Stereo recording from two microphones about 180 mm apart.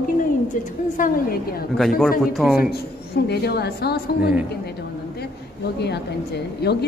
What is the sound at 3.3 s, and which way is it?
A woman's voice, 65° left (ahead or behind).